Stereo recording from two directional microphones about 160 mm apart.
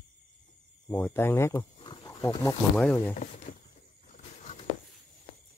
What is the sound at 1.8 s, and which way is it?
Wild animals, 25° left (ahead or behind).